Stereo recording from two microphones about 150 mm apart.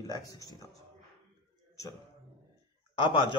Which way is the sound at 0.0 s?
25° left (ahead or behind).